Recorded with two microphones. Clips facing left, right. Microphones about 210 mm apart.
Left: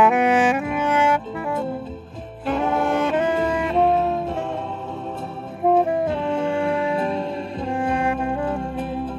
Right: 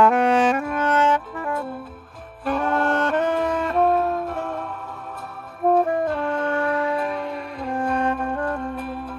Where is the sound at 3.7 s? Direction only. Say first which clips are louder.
Left 1 dB; 25° left (ahead or behind).